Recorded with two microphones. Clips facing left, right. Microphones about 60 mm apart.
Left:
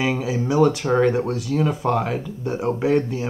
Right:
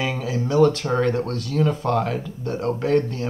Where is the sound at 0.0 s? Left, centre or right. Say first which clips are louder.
Left 3 dB; centre.